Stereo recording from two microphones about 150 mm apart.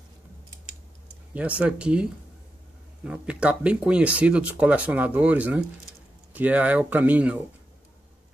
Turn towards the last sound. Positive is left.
turn(degrees=-10)  # may be behind; listen again after turning